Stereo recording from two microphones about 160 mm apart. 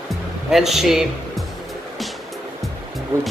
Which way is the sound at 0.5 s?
Centre (ahead or behind).